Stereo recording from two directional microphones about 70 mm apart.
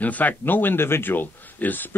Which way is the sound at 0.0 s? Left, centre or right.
Left.